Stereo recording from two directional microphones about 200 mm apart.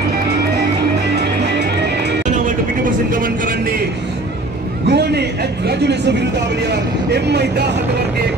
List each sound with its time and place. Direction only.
2.3 s vehicle: 40° right (ahead or behind)
4.8 s a sound: 55° right (ahead or behind)
6.7 s speech: 55° right (ahead or behind)